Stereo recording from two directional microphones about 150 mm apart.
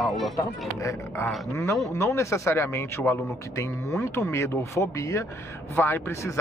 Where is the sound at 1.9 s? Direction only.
20° left (ahead or behind).